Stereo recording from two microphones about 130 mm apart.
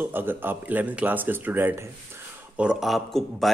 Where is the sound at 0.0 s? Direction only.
15° right (ahead or behind).